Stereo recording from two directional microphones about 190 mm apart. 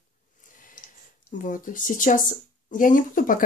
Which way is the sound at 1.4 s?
45° left (ahead or behind).